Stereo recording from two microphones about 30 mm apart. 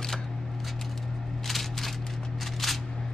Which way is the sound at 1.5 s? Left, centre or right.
Centre.